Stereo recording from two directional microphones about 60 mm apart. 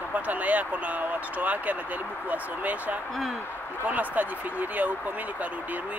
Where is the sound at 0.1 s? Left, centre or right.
Right.